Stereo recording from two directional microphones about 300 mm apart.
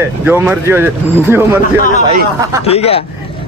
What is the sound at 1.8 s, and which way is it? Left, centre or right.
Speech, left.